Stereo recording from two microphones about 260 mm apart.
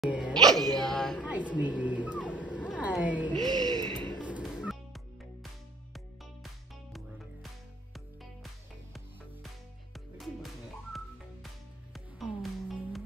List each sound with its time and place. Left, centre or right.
0.0 s music: centre
1.6 s cat: centre
2.1 s music: centre
2.8 s a sound: centre
3.4 s music: centre
4.2 s music: centre
9.9 s whistling: centre
11.9 s music: centre